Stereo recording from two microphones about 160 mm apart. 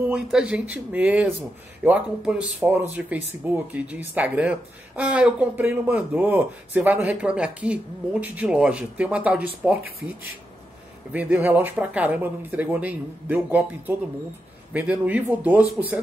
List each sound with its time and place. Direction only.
0.0 s speech: 5° right (ahead or behind)